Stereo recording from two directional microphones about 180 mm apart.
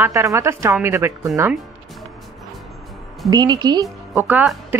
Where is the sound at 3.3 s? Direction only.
25° right (ahead or behind).